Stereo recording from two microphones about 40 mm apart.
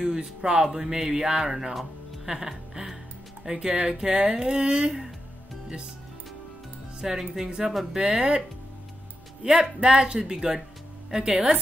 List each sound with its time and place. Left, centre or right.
0.0 s speech: centre
2.2 s music: centre
3.5 s speech: centre
7.0 s speech: centre
9.4 s speech: centre